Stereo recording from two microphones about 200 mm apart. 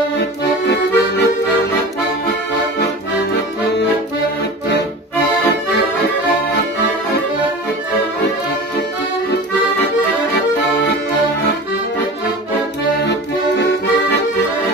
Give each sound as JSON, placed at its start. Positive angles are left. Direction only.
{"t": 0.2, "sound": "accordion", "side_deg": 55}
{"t": 10.3, "sound": "accordion", "side_deg": 60}
{"t": 13.0, "sound": "accordion", "side_deg": 60}